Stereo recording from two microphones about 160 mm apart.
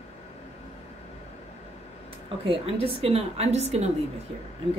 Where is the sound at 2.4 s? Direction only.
35° right (ahead or behind).